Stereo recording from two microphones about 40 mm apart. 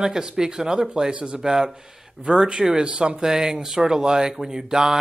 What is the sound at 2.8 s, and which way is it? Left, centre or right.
Speech, right.